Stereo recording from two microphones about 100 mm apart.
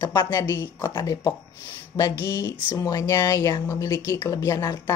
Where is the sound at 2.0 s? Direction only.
40° left (ahead or behind).